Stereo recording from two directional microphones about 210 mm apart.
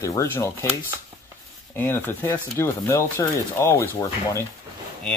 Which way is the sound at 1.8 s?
10° left (ahead or behind).